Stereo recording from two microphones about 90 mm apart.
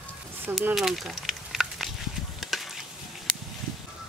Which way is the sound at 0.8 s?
5° right (ahead or behind).